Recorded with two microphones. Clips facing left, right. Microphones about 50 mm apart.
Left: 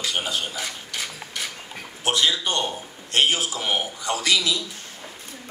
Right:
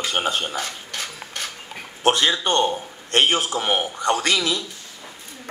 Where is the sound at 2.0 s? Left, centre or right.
Right.